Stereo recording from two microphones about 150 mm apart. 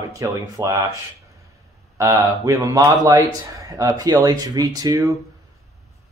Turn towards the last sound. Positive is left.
turn(degrees=-25)  # may be behind; listen again after turning